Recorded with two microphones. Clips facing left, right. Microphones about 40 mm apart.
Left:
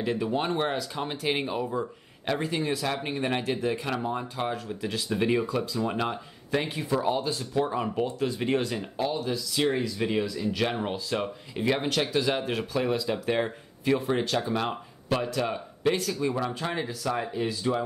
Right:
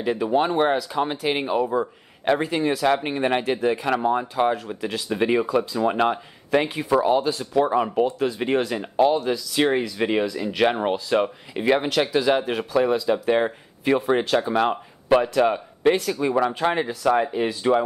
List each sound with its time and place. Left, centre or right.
0.0 s speech: centre
1.6 s speech: right
4.5 s speech: centre; by 8.4 s right
8.6 s speech: right
9.0 s speech: right; by 13.5 s centre
13.8 s speech: right